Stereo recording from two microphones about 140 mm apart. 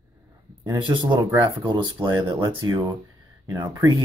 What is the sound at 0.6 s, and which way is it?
Speech, 35° right (ahead or behind).